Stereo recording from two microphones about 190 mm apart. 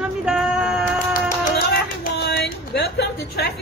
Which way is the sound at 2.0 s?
60° left (ahead or behind).